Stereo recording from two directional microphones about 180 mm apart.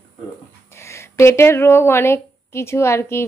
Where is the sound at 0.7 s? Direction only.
15° left (ahead or behind).